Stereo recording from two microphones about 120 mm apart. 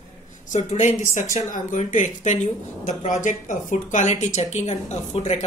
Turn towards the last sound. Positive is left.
turn(degrees=70)  # may be behind; listen again after turning